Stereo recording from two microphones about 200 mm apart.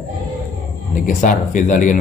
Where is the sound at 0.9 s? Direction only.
40° left (ahead or behind).